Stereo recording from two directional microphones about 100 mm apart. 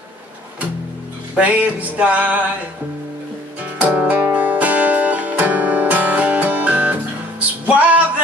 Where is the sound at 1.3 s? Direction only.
15° right (ahead or behind).